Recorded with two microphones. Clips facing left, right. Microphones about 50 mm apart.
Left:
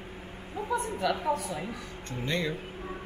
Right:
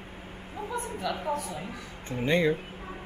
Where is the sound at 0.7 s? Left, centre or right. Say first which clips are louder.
Left 4 dB; centre.